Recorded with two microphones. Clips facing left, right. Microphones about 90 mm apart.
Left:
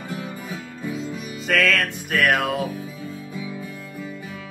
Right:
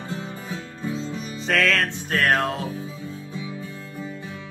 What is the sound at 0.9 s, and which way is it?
Music, 30° right (ahead or behind).